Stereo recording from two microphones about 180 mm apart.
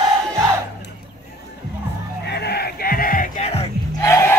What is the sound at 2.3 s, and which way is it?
Music, 65° left (ahead or behind).